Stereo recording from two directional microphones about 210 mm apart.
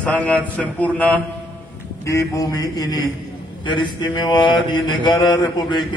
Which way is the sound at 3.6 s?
20° left (ahead or behind).